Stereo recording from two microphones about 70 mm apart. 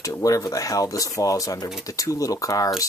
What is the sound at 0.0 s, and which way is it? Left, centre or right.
Speech, left.